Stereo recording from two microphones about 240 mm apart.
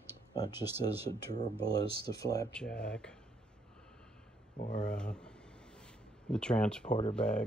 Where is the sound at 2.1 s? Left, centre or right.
Centre.